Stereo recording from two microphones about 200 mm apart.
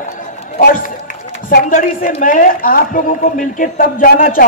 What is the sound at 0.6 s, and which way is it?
A woman's voice, 45° left (ahead or behind).